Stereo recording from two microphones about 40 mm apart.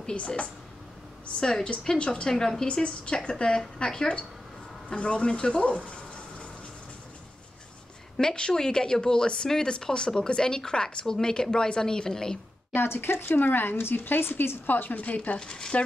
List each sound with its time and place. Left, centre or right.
1.4 s speech: left
2.2 s speech: centre
2.7 s speech: left
8.2 s speech: left
12.7 s speech: left
13.3 s a woman's voice: left
15.3 s speech: centre